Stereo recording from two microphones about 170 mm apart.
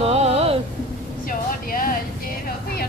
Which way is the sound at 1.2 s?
55° left (ahead or behind).